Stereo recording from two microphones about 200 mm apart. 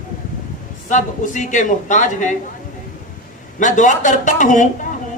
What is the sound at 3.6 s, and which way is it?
A woman's voice, 40° left (ahead or behind).